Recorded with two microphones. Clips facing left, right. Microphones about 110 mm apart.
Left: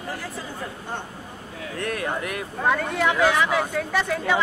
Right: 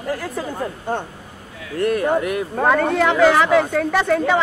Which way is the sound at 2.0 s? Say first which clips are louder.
Right 9 dB; 55° right (ahead or behind).